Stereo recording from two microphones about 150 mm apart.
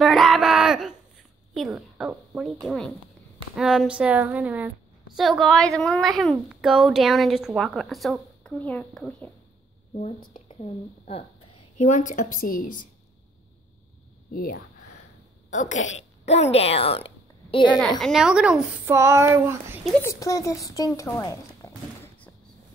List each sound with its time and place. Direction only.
0.0 s a sound: centre (ahead or behind)
1.5 s a woman's voice: centre (ahead or behind)
10.2 s a woman's voice: 40° left (ahead or behind)
11.8 s a woman's voice: 55° left (ahead or behind)
14.3 s speech: 70° left (ahead or behind)
15.5 s a woman's voice: 55° left (ahead or behind); by 17.6 s 40° left (ahead or behind)
17.6 s a woman's voice: 5° left (ahead or behind)
18.9 s speech: 20° right (ahead or behind)
20.0 s a woman's voice: 20° left (ahead or behind)
21.6 s a sound: 15° left (ahead or behind)